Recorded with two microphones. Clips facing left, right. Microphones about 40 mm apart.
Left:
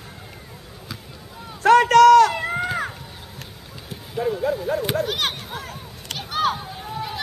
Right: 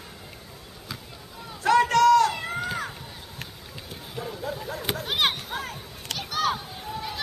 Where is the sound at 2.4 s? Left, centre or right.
Left.